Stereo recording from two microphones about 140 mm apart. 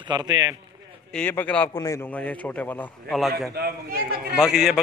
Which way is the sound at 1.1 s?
10° left (ahead or behind).